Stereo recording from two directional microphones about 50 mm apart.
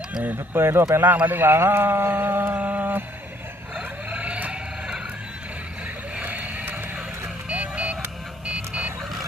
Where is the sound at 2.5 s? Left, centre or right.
Right.